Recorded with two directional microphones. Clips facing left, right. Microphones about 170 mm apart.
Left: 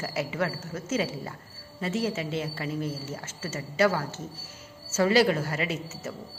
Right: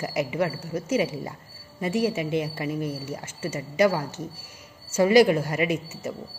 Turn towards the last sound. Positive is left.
turn(degrees=-15)  # may be behind; listen again after turning